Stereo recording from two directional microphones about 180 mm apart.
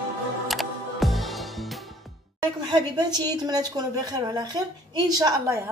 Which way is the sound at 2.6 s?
25° right (ahead or behind).